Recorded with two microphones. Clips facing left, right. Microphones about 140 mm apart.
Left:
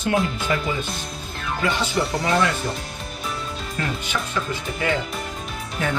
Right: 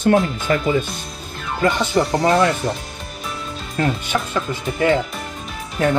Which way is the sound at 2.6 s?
50° right (ahead or behind).